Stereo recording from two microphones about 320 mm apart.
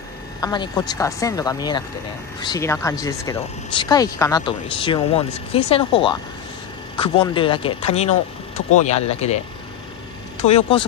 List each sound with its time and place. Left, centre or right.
0.4 s speech: centre
10.4 s speech: centre